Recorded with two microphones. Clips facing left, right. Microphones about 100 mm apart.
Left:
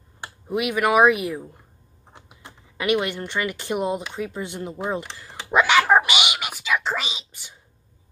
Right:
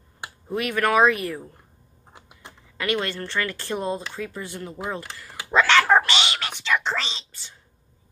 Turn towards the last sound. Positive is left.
turn(degrees=15)  # may be behind; listen again after turning